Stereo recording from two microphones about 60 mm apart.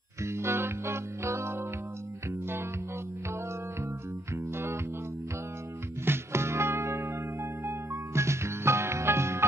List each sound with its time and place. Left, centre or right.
0.2 s music: right
4.3 s music: right
6.0 s music: right